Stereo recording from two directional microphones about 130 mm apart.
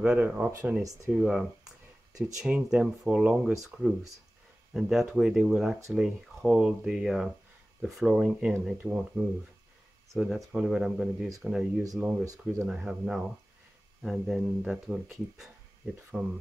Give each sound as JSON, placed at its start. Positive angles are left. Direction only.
{"t": 0.0, "sound": "speech", "side_deg": -10}
{"t": 0.5, "sound": "speech", "side_deg": -20}
{"t": 1.2, "sound": "speech", "side_deg": -5}